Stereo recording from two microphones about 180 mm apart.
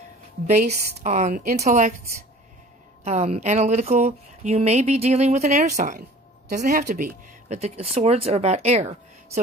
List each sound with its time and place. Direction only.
0.9 s a woman's voice: 40° right (ahead or behind)
3.0 s speech: 35° right (ahead or behind)
5.4 s a woman's voice: 50° right (ahead or behind)